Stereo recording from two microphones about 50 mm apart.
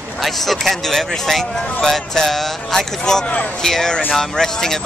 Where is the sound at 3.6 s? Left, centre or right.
Centre.